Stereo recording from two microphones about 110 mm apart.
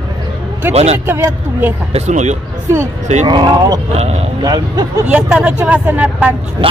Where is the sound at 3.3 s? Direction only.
40° right (ahead or behind).